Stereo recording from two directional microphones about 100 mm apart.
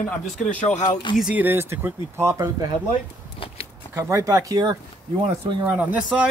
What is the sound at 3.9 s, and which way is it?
Speech, 30° right (ahead or behind).